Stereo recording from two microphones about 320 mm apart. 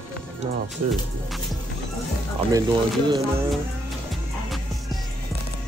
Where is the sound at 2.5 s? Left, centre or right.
Centre.